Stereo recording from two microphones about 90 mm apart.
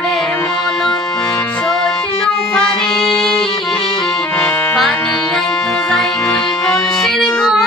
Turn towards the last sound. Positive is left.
turn(degrees=5)  # may be behind; listen again after turning